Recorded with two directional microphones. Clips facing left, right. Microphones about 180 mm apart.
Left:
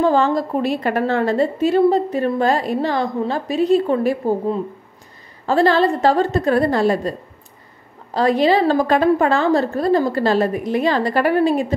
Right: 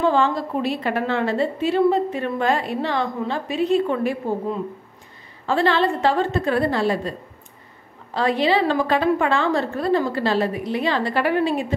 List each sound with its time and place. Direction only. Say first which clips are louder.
0.0 s a woman's voice: left 3 dB; 40° left (ahead or behind)